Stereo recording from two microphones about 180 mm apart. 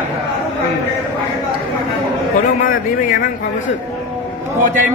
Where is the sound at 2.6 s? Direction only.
55° left (ahead or behind).